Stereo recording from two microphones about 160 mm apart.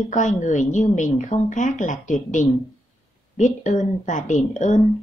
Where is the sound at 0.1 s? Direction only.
50° left (ahead or behind).